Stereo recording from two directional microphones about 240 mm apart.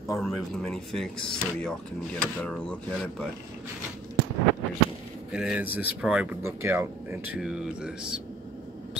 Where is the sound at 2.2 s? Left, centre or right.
Centre.